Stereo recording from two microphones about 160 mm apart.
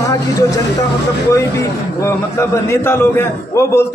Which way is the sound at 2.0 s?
15° left (ahead or behind).